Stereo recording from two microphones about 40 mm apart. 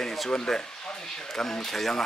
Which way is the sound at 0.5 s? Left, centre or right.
Centre.